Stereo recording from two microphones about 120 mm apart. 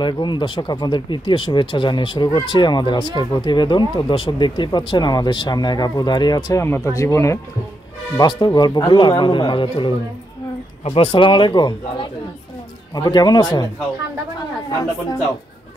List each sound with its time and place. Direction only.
0.0 s speech: 40° left (ahead or behind)
6.6 s speech: 25° left (ahead or behind)